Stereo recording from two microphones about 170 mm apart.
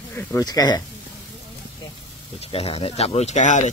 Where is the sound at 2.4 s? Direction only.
35° left (ahead or behind).